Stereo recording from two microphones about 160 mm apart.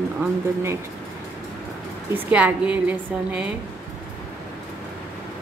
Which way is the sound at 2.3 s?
10° right (ahead or behind).